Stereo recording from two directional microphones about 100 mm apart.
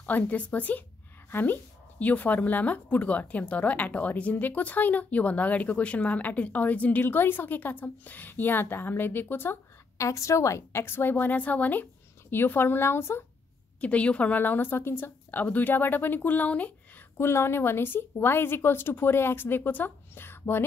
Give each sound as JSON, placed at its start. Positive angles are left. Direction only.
{"t": 0.0, "sound": "speech", "side_deg": 15}
{"t": 13.7, "sound": "a woman's voice", "side_deg": 15}